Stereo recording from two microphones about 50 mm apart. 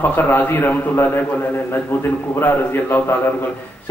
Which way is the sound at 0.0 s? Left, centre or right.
Left.